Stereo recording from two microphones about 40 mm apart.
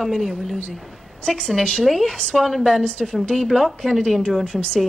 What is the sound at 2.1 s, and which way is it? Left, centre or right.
Speech, left.